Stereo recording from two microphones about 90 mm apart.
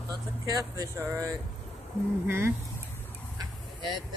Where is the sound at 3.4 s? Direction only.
60° right (ahead or behind).